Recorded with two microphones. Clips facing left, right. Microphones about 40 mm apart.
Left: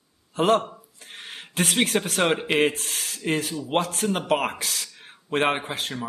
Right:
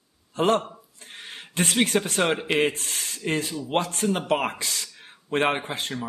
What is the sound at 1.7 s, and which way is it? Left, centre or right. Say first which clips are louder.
A man's voice: right 1 dB; centre.